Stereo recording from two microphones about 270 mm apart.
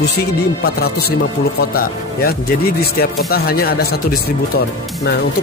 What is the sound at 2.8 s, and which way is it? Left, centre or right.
Speech, left.